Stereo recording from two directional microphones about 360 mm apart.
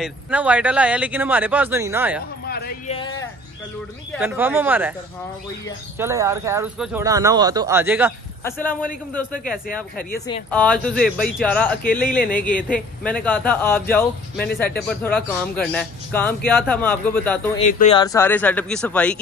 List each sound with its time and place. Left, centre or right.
0.0 s speech: centre
2.4 s speech: left
3.0 s speech: centre
4.1 s speech: centre
5.9 s speech: centre
8.5 s speech: centre
10.2 s speech: centre
12.0 s speech: left
12.7 s speech: centre
17.6 s speech: centre